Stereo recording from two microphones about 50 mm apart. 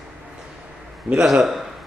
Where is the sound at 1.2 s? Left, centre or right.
Centre.